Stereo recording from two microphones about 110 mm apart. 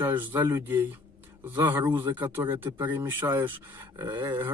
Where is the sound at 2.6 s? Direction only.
45° right (ahead or behind).